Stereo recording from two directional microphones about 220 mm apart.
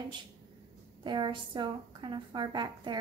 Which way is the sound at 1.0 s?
20° right (ahead or behind).